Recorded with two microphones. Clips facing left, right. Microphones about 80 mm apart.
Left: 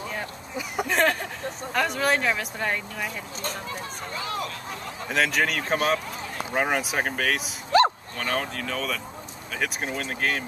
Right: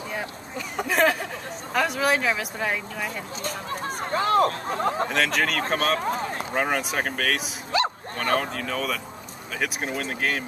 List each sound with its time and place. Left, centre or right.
0.8 s a sound: centre
1.7 s speech: centre
3.8 s speech: right
5.1 s speech: centre
6.0 s run: right
6.5 s speech: centre
7.7 s dog: left
8.2 s speech: centre